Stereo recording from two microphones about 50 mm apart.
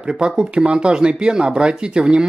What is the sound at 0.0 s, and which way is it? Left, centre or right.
Speech, centre.